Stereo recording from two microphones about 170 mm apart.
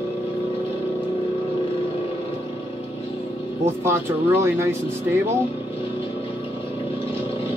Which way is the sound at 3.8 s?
15° right (ahead or behind).